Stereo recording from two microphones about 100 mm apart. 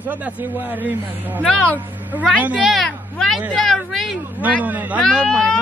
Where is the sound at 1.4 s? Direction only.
15° left (ahead or behind).